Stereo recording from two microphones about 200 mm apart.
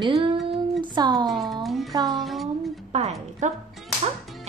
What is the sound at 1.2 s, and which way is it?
Speech, centre (ahead or behind).